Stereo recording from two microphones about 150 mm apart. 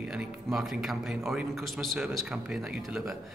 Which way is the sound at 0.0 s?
5° right (ahead or behind).